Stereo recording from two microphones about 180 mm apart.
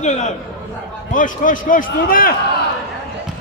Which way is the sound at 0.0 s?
40° left (ahead or behind).